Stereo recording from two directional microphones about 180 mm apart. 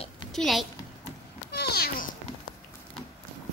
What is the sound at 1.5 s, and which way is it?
Cat, 60° left (ahead or behind).